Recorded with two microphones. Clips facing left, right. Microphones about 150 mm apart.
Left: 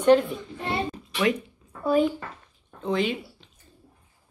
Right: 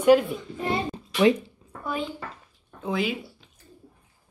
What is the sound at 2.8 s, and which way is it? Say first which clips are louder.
Speech: left 2 dB; 5° right (ahead or behind).